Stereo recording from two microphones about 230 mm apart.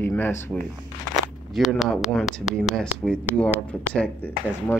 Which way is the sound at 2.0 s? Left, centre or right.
Centre.